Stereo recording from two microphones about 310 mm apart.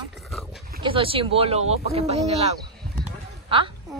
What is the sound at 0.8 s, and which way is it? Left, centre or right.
Speech, centre.